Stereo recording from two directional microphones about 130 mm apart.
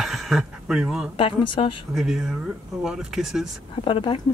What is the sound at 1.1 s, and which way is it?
Speech, 45° left (ahead or behind).